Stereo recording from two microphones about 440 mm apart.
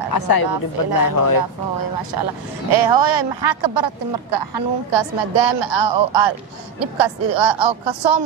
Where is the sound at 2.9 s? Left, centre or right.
Right.